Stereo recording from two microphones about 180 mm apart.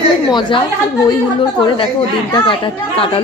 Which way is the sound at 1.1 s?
25° left (ahead or behind).